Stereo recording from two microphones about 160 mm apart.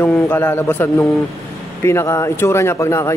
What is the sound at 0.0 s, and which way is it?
Speech, 10° left (ahead or behind).